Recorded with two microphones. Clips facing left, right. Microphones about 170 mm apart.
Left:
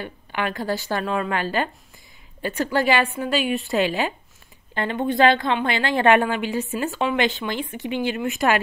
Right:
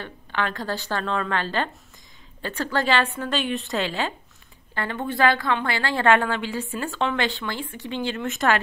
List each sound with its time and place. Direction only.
0.0 s speech: 10° left (ahead or behind)